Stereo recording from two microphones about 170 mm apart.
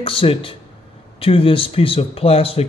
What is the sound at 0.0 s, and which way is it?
Speech, 30° left (ahead or behind).